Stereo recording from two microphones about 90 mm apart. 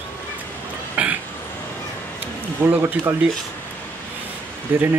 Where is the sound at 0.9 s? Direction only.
20° right (ahead or behind).